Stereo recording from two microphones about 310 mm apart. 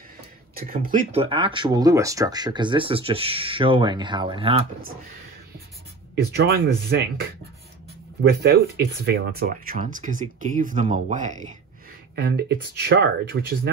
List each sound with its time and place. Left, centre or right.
0.6 s speech: right
6.3 s speech: right